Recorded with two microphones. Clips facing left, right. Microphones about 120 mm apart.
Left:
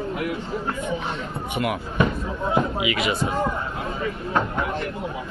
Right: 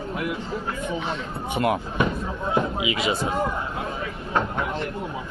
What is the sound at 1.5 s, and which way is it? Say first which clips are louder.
Speech: right 1 dB; 30° right (ahead or behind).